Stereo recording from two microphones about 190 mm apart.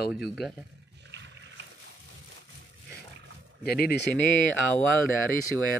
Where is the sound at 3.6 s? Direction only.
55° left (ahead or behind).